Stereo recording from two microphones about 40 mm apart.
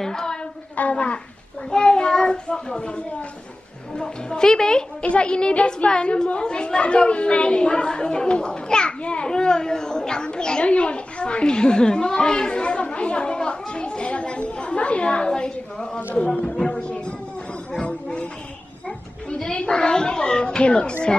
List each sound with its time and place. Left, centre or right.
0.0 s music: centre
0.7 s a woman's voice: left; by 4.8 s centre
5.0 s a woman's voice: left
16.4 s music: left
18.9 s speech: centre